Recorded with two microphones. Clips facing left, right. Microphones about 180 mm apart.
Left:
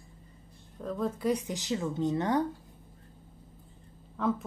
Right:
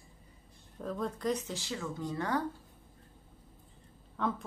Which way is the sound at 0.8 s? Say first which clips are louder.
Left 4 dB; centre (ahead or behind).